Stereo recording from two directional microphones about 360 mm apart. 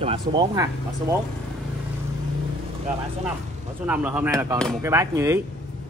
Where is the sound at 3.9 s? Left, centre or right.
Centre.